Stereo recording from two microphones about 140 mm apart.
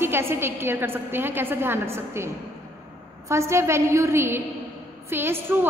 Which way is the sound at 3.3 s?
20° right (ahead or behind).